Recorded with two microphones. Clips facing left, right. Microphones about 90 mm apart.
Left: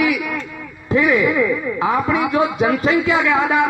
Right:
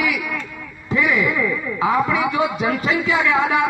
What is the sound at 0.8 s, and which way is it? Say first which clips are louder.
A man's voice: left 4 dB; 40° left (ahead or behind).